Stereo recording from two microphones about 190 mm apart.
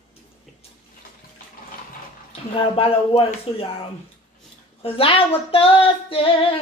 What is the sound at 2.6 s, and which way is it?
Female singing, 30° left (ahead or behind).